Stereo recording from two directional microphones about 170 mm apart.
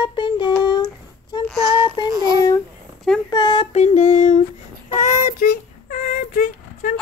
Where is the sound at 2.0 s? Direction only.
25° right (ahead or behind).